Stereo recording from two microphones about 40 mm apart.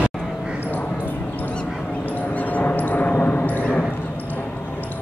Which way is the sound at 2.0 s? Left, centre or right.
Left.